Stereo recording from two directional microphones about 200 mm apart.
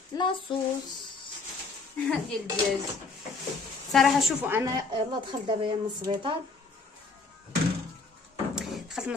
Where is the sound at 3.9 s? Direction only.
Centre (ahead or behind); by 6.1 s 25° right (ahead or behind).